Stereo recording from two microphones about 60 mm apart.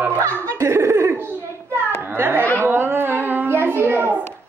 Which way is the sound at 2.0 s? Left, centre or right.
Right.